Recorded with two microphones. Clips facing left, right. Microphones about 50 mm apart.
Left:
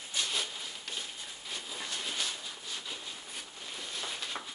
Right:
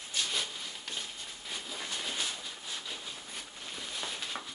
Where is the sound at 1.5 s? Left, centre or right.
Centre.